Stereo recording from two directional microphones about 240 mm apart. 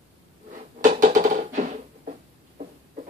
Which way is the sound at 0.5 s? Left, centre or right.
Right.